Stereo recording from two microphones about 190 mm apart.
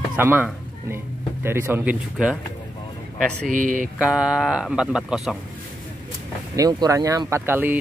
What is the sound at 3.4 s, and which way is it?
Speech, 45° right (ahead or behind).